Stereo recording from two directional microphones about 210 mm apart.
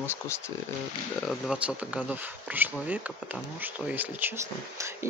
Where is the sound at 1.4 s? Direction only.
5° right (ahead or behind).